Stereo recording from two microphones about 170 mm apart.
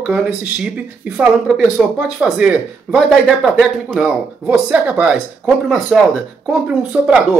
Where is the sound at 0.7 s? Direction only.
5° right (ahead or behind).